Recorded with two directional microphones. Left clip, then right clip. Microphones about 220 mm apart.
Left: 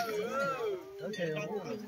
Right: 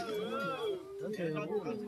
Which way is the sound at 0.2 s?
55° right (ahead or behind).